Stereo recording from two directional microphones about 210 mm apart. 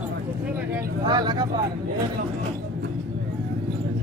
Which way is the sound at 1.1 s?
20° right (ahead or behind).